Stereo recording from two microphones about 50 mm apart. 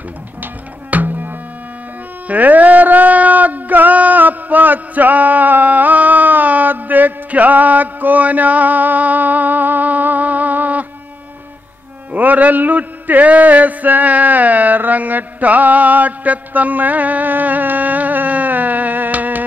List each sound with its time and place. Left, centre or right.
0.4 s music: right
12.1 s music: right